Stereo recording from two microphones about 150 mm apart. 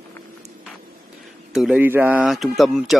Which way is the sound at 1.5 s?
5° right (ahead or behind).